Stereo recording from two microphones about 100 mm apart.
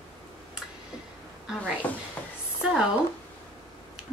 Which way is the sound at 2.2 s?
15° left (ahead or behind).